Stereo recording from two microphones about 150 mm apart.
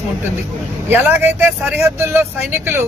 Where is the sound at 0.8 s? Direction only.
15° right (ahead or behind).